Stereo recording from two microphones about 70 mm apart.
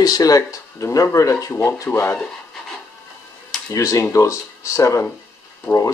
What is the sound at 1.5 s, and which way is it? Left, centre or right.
Speech, left.